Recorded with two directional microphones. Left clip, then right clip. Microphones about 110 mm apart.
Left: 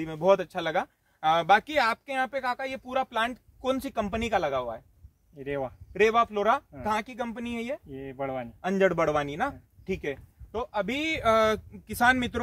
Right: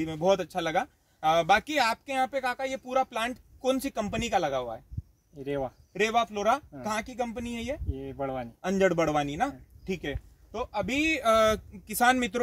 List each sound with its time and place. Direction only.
0.0 s speech: 35° right (ahead or behind)
5.4 s speech: 5° left (ahead or behind)
5.9 s speech: 35° right (ahead or behind)
7.9 s speech: 5° left (ahead or behind)
8.5 s speech: 25° right (ahead or behind)